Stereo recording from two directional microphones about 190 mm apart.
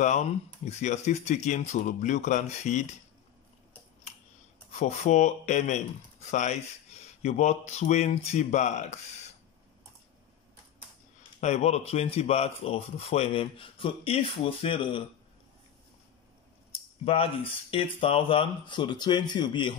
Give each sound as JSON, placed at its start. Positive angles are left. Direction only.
{"t": 0.0, "sound": "speech", "side_deg": 35}
{"t": 4.7, "sound": "speech", "side_deg": 40}
{"t": 11.4, "sound": "speech", "side_deg": 35}
{"t": 17.0, "sound": "speech", "side_deg": 30}